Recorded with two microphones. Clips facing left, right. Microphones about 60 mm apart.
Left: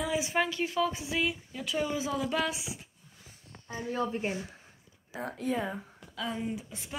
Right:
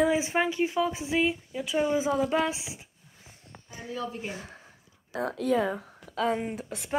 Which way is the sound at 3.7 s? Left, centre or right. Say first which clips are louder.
Left 3 dB; left.